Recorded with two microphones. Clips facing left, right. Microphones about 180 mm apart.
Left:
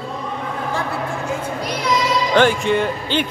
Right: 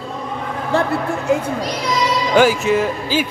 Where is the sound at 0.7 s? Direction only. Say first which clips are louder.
Right 9 dB; 70° right (ahead or behind).